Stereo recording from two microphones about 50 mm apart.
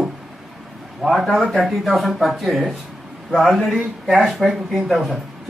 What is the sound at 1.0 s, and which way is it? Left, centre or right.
Speech, right.